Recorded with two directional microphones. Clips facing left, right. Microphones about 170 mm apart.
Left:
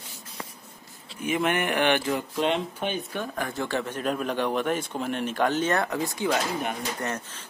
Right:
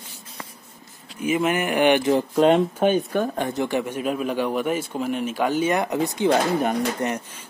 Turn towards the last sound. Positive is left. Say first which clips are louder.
# right 6 dB
turn(degrees=-20)  # may be behind; listen again after turning